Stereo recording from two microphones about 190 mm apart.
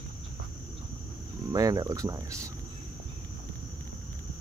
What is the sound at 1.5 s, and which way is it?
Speech, 20° right (ahead or behind).